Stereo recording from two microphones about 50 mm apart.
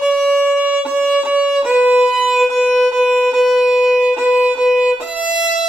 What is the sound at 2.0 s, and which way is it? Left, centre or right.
Music, centre.